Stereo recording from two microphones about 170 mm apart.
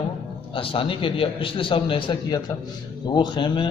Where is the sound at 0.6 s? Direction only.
30° left (ahead or behind).